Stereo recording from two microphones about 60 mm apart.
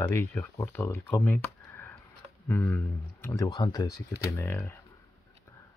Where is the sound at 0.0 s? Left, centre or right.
Left.